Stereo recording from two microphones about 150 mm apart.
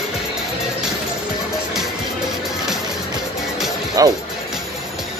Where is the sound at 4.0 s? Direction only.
25° right (ahead or behind).